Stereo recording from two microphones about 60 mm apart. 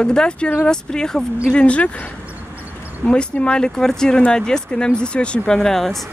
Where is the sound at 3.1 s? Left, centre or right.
Centre.